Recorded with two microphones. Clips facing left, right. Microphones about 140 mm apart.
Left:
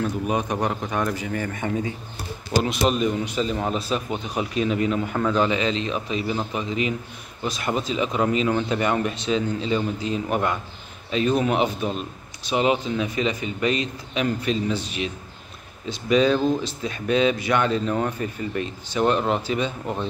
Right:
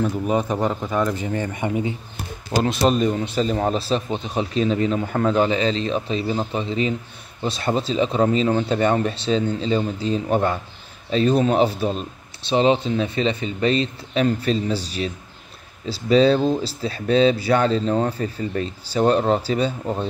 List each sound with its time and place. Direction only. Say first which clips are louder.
0.3 s a man's voice: right 3 dB; 15° left (ahead or behind)
1.2 s speech: right 3 dB; 25° right (ahead or behind)
2.6 s speech: right 4 dB; 35° right (ahead or behind)